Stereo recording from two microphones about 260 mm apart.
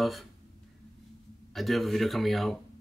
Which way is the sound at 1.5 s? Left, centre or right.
Centre.